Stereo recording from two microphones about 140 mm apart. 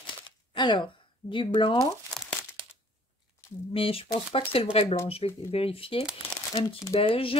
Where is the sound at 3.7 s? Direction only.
40° left (ahead or behind).